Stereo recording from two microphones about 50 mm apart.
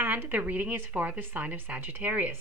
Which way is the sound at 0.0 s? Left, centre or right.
Right.